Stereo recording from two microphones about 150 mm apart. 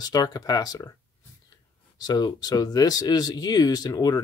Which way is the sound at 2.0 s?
25° left (ahead or behind).